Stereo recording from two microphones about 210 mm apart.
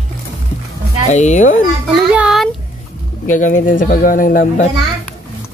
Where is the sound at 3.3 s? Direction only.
35° left (ahead or behind).